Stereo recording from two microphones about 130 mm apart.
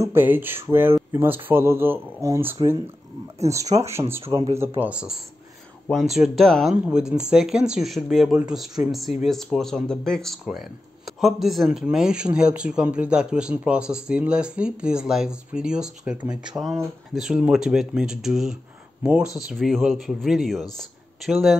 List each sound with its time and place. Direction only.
0.0 s speech: 15° right (ahead or behind)
4.0 s speech: 30° right (ahead or behind)
4.8 s speech: 10° right (ahead or behind)